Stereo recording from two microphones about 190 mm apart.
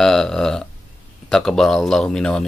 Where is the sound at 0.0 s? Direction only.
5° left (ahead or behind).